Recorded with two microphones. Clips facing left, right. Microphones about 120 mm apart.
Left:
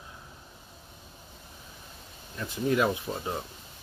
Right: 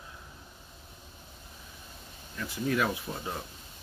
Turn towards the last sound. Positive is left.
turn(degrees=20)  # may be behind; listen again after turning